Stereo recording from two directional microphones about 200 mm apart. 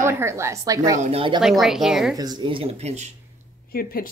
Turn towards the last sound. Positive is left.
turn(degrees=45)  # may be behind; listen again after turning